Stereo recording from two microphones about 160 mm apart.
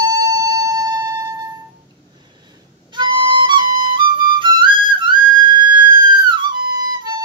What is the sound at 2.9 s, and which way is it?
Flute, 30° right (ahead or behind).